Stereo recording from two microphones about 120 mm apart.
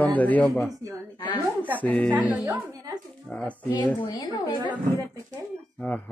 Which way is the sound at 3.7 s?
35° left (ahead or behind).